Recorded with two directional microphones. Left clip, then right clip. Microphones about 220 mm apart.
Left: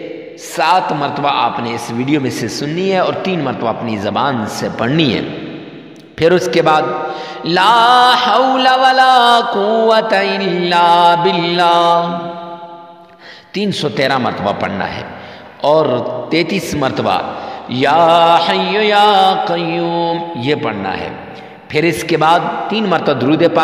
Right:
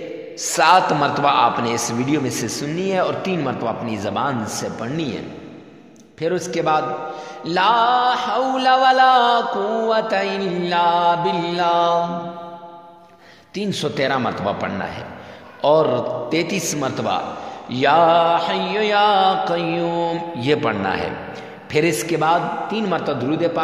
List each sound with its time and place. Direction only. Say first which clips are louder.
0.6 s a man's voice: left 1 dB; 10° left (ahead or behind)
2.0 s music: left 5 dB; 25° left (ahead or behind); by 5.2 s 40° left (ahead or behind)
6.1 s a man's voice: left 11 dB; 40° left (ahead or behind)
7.4 s music: left 7 dB; 35° left (ahead or behind)
13.6 s music: left 6 dB; 25° left (ahead or behind); by 21.1 s 10° left (ahead or behind)
21.7 s music: left 5 dB; 25° left (ahead or behind)